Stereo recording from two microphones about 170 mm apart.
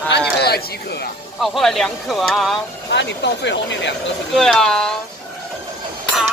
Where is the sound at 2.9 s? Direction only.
90° left.